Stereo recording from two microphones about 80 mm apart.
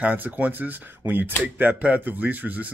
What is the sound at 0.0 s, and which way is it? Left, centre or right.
Speech, right.